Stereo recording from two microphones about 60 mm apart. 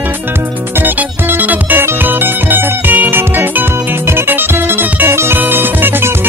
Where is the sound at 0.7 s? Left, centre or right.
Right.